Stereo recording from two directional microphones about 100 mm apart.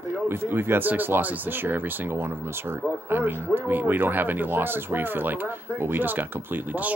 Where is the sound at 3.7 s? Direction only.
20° right (ahead or behind).